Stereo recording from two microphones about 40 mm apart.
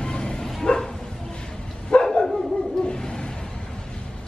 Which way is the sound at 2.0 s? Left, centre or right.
Centre.